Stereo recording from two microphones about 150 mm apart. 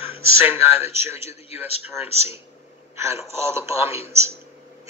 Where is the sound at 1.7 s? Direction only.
45° left (ahead or behind).